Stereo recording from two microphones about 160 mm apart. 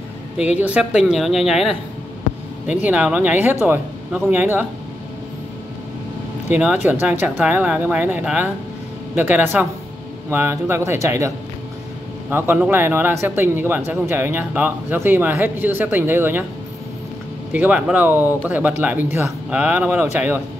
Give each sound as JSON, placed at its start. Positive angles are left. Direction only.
{"t": 0.6, "sound": "speech", "side_deg": -10}
{"t": 6.5, "sound": "speech", "side_deg": -10}
{"t": 17.5, "sound": "speech", "side_deg": -10}